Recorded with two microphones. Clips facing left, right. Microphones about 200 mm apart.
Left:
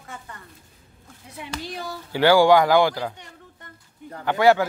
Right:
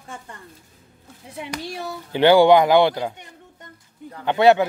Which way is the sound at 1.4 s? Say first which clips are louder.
Right 2 dB; 25° right (ahead or behind).